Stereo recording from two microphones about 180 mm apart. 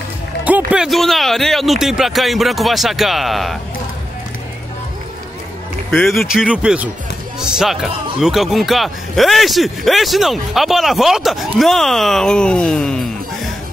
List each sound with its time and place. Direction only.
0.7 s speech: centre (ahead or behind)
5.9 s speech: 5° left (ahead or behind)